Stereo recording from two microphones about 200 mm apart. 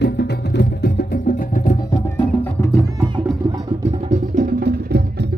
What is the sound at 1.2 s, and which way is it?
Music, 40° left (ahead or behind).